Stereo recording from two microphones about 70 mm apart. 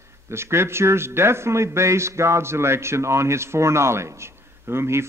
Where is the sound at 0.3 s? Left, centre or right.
Right.